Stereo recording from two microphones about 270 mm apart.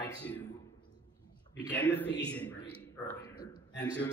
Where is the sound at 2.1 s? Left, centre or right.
Left.